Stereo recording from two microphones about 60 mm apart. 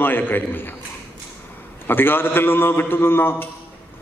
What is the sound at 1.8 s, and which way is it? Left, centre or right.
A man's voice, left.